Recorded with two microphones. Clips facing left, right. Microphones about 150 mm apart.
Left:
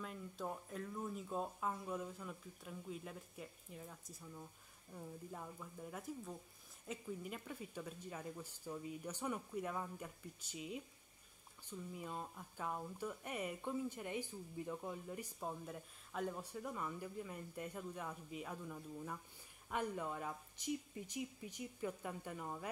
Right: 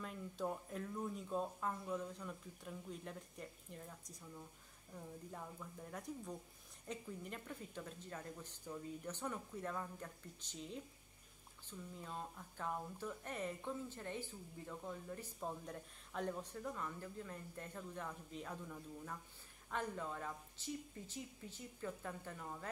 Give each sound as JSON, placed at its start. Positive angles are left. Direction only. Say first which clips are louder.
{"t": 0.0, "sound": "speech", "louder": "right 2 dB", "side_deg": 0}
{"t": 11.9, "sound": "speech", "louder": "left 1 dB", "side_deg": 10}